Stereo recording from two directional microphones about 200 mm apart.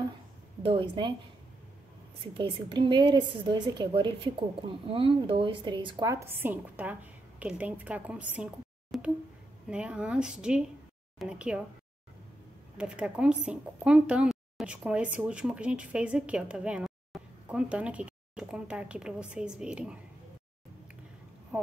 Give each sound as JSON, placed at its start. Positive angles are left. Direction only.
{"t": 0.6, "sound": "a woman's voice", "side_deg": -25}
{"t": 2.3, "sound": "a woman's voice", "side_deg": -25}
{"t": 8.9, "sound": "a sound", "side_deg": 0}
{"t": 9.7, "sound": "speech", "side_deg": -5}
{"t": 12.7, "sound": "speech", "side_deg": -5}